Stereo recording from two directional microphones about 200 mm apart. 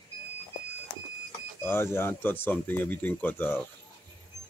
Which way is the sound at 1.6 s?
10° left (ahead or behind).